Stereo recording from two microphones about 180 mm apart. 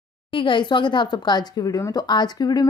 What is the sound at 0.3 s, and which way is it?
Speech, 30° left (ahead or behind).